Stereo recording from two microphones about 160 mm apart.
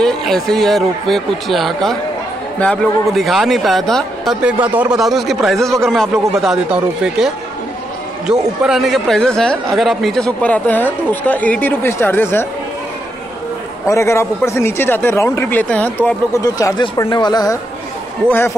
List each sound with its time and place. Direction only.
0.0 s speech: 5° left (ahead or behind)
13.8 s speech: 15° left (ahead or behind)
16.4 s speech: 20° left (ahead or behind)